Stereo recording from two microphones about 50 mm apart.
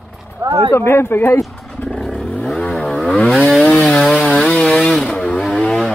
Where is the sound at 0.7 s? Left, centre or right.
Left.